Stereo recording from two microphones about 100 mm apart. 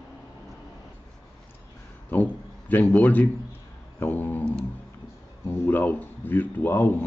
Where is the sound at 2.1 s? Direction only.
20° left (ahead or behind).